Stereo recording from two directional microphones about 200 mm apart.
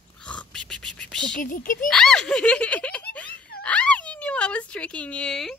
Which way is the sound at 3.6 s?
5° left (ahead or behind).